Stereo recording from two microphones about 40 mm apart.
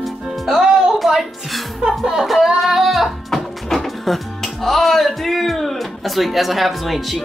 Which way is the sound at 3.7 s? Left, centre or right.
Centre.